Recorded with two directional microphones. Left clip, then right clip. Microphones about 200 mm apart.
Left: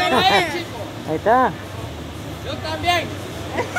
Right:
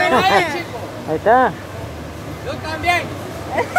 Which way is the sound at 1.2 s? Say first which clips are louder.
Right 3 dB; 5° left (ahead or behind).